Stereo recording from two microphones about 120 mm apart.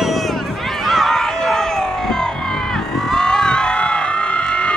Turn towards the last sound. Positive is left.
turn(degrees=10)  # may be behind; listen again after turning